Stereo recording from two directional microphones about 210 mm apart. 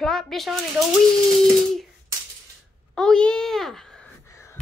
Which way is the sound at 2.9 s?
5° left (ahead or behind).